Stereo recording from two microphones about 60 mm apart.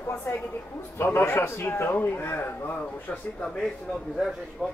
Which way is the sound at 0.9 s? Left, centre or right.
Left.